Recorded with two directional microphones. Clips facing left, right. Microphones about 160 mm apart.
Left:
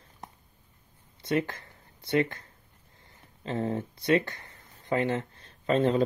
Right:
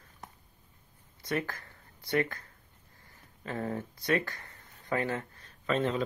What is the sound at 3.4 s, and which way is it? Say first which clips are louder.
Speech: left 4 dB; 25° left (ahead or behind).